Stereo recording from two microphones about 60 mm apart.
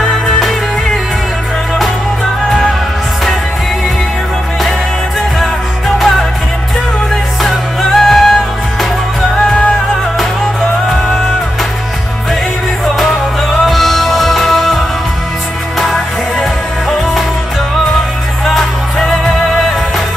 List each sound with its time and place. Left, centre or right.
0.1 s music: centre
5.4 s music: centre
7.4 s music: centre
9.4 s music: centre
13.7 s music: centre
15.8 s music: centre
18.4 s music: centre